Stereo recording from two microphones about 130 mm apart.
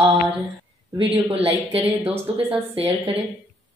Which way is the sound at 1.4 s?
50° right (ahead or behind).